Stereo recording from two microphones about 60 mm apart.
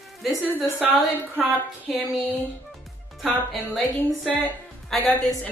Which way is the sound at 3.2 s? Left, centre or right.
Centre.